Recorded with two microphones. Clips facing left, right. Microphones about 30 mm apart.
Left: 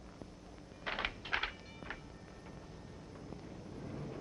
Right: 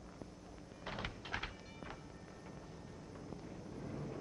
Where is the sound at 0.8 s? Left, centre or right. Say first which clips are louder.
Left 6 dB; left.